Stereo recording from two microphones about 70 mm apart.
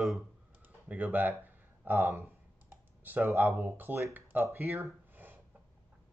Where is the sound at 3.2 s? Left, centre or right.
Right.